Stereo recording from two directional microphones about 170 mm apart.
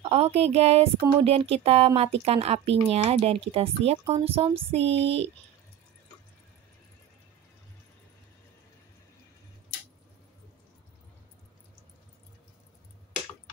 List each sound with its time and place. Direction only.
0.0 s speech: 35° right (ahead or behind)